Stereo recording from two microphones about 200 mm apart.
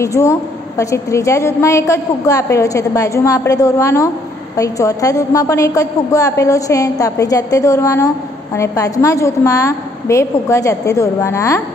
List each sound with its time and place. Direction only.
0.0 s a woman's voice: 15° left (ahead or behind)